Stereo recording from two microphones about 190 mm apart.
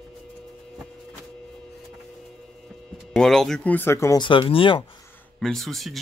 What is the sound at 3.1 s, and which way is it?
Speech, centre (ahead or behind).